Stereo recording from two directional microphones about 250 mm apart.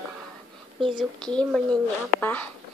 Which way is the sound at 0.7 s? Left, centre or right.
Centre.